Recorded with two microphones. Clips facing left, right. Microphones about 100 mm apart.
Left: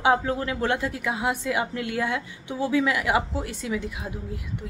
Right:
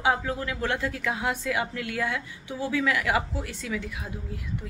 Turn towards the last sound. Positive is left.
turn(degrees=20)  # may be behind; listen again after turning